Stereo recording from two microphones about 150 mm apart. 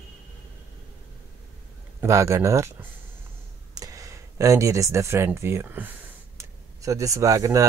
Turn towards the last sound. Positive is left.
turn(degrees=-20)  # may be behind; listen again after turning